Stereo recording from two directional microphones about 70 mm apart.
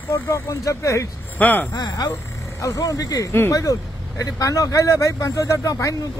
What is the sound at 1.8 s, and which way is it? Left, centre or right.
Speech, left.